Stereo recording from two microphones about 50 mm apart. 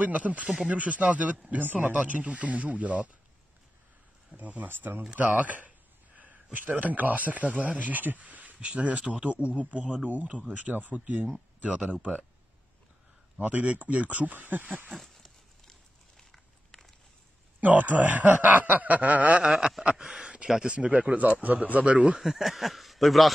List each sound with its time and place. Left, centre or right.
0.0 s a man's voice: right
4.4 s a man's voice: right
4.6 s speech: right
5.1 s a man's voice: right
13.4 s a man's voice: right
14.9 s a sound: centre
17.6 s a man's voice: right; by 20.7 s centre
20.7 s speech: right
22.2 s speech: centre